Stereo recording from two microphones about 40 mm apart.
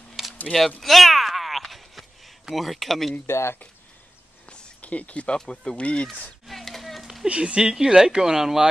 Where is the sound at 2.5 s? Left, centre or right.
Centre.